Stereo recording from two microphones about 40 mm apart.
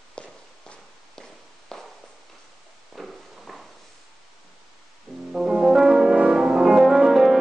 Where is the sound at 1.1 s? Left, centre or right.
Centre.